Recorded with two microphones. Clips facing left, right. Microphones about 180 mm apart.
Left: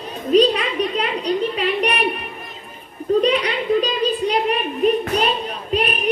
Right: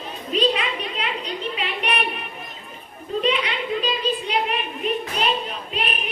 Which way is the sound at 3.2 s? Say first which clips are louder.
Left 3 dB; 40° left (ahead or behind).